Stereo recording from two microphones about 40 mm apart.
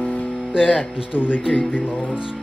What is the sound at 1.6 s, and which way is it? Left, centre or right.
Speech, left.